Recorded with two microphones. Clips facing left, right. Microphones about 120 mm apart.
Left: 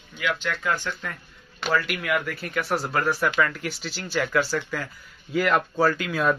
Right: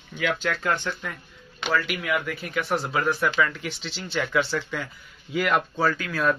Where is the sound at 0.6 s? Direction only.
25° right (ahead or behind).